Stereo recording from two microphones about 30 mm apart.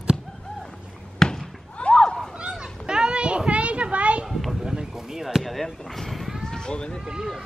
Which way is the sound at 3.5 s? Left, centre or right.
Right.